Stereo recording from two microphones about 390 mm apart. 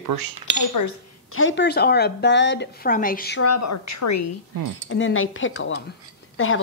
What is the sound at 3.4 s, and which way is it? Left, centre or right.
Speech, left.